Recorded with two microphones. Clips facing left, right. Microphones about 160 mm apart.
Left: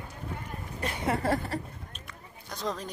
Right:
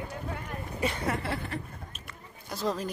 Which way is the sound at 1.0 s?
40° left (ahead or behind).